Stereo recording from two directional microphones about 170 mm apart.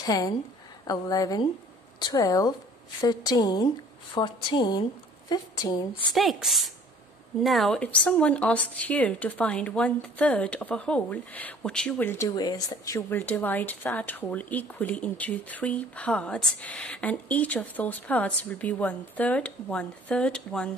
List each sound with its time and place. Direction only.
0.0 s a woman's voice: 20° left (ahead or behind)
6.1 s a woman's voice: centre (ahead or behind)
12.4 s a woman's voice: 25° left (ahead or behind); by 20.7 s 5° left (ahead or behind)